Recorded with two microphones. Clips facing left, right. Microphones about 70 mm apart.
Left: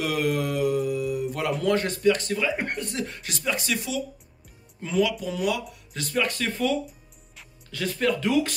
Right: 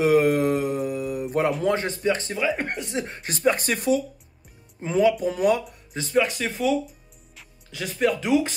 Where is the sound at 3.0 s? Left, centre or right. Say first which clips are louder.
Right 7 dB; right.